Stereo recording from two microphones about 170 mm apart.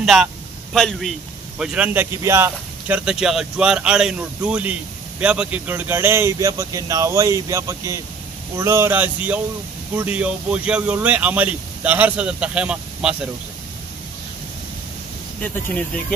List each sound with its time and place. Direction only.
0.0 s a man's voice: centre (ahead or behind)